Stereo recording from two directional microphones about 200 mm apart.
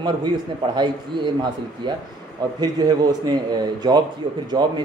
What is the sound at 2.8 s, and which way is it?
Speech, 20° right (ahead or behind).